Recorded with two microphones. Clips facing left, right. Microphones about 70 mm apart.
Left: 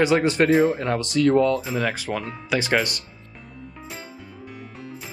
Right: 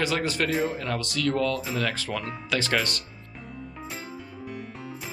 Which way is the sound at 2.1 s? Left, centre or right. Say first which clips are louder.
Left 3 dB; centre.